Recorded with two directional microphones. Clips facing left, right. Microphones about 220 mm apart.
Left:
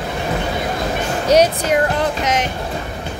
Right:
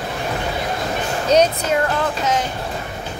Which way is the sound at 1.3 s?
10° left (ahead or behind).